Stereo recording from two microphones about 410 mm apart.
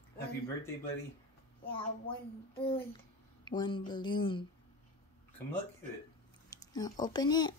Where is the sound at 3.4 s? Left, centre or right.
Centre.